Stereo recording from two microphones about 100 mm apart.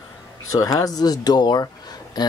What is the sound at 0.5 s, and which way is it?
Speech, 35° left (ahead or behind).